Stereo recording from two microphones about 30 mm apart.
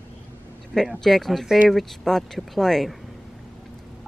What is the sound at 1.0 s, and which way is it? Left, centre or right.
Speech, centre.